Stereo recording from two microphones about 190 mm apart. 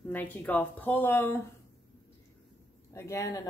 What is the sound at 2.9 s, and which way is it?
Speech, 15° left (ahead or behind).